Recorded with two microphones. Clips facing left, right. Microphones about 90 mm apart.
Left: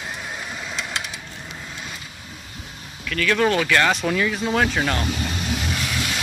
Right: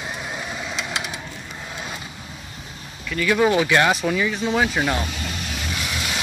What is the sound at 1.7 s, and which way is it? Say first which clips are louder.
Vehicle: right 3 dB; 20° right (ahead or behind).